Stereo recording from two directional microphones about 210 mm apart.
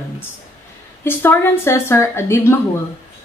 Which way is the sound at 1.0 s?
10° left (ahead or behind).